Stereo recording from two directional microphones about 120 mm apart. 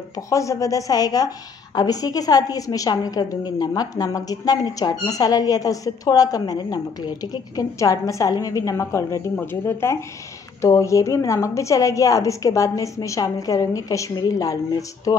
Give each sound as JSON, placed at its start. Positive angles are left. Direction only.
{"t": 0.1, "sound": "a woman's voice", "side_deg": 25}